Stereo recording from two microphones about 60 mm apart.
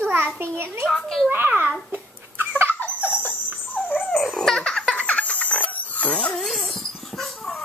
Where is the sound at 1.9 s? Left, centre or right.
Right.